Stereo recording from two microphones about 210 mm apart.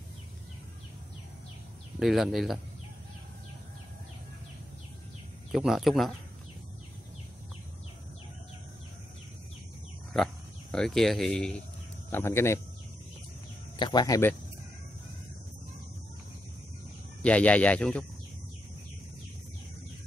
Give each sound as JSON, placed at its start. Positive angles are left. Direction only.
{"t": 2.0, "sound": "speech", "side_deg": 0}
{"t": 5.5, "sound": "speech", "side_deg": 0}
{"t": 10.1, "sound": "speech", "side_deg": 5}
{"t": 13.7, "sound": "speech", "side_deg": 20}
{"t": 17.2, "sound": "speech", "side_deg": 5}